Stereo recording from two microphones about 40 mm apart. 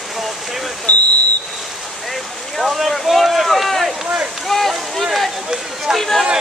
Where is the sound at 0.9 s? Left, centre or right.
Left.